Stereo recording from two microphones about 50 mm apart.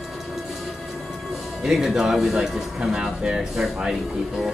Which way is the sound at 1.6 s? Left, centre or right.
Centre.